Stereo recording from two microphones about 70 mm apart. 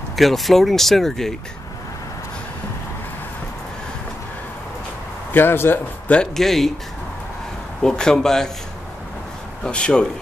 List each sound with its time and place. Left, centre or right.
0.1 s speech: centre
5.3 s speech: left
6.3 s speech: centre
7.8 s a man's voice: centre
9.6 s a man's voice: centre